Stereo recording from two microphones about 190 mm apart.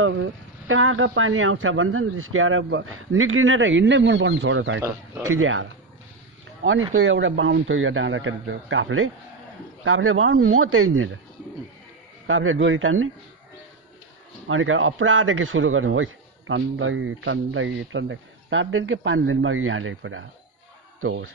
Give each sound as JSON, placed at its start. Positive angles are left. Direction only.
{"t": 0.0, "sound": "a man's voice", "side_deg": -90}
{"t": 6.9, "sound": "a man's voice", "side_deg": -80}
{"t": 12.3, "sound": "a man's voice", "side_deg": -90}
{"t": 14.5, "sound": "a man's voice", "side_deg": -90}
{"t": 21.0, "sound": "speech", "side_deg": -70}